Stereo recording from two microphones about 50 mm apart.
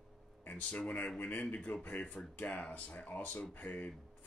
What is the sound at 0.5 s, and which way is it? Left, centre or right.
Speech, left.